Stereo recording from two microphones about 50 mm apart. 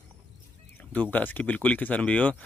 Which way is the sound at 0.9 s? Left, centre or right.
Left.